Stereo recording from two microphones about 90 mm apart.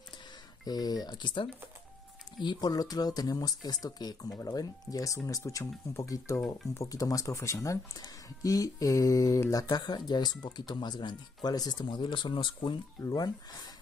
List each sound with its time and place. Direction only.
0.7 s speech: 45° left (ahead or behind)
2.4 s speech: 45° left (ahead or behind)
9.7 s speech: 55° left (ahead or behind)
13.0 s speech: 45° left (ahead or behind)